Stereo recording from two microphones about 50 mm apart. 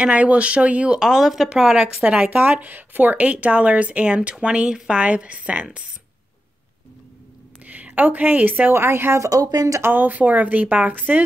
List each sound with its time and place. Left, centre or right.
0.0 s a woman's voice: right
0.9 s a woman's voice: centre
1.6 s a woman's voice: centre
2.2 s a woman's voice: right
7.6 s a woman's voice: right
8.7 s speech: right
9.2 s speech: right
9.8 s a woman's voice: right